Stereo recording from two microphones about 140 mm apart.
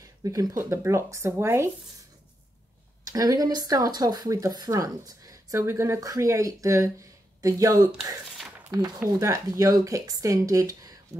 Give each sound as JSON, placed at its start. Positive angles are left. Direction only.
{"t": 0.0, "sound": "speech", "side_deg": -25}
{"t": 3.1, "sound": "speech", "side_deg": -25}
{"t": 8.4, "sound": "a sound", "side_deg": 0}
{"t": 8.7, "sound": "speech", "side_deg": -25}